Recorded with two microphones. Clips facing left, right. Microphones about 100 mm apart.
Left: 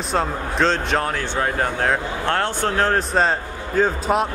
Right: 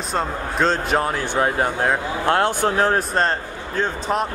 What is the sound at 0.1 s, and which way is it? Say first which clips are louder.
Speech: left 2 dB; centre (ahead or behind).